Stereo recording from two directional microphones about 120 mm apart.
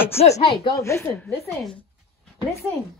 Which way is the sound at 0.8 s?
20° left (ahead or behind).